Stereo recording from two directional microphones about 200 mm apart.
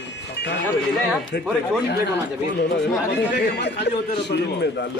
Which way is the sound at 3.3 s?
60° left (ahead or behind).